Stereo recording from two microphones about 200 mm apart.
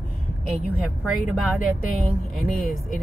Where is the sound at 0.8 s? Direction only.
Centre (ahead or behind).